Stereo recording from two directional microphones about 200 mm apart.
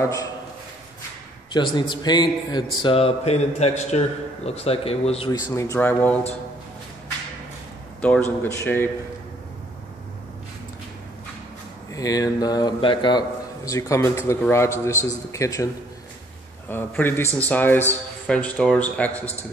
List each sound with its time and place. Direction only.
0.0 s a man's voice: 15° left (ahead or behind)
1.5 s speech: 20° left (ahead or behind)
5.6 s a man's voice: 10° left (ahead or behind)
8.0 s a man's voice: 10° left (ahead or behind)
11.9 s a man's voice: 20° left (ahead or behind)